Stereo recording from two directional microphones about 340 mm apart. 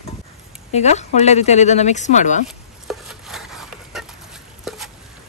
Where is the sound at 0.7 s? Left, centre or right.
Centre.